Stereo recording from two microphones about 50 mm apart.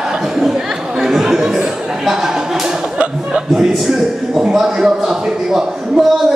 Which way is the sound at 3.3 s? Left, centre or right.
Centre.